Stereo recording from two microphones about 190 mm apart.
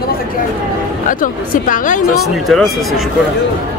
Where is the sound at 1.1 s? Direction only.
45° left (ahead or behind).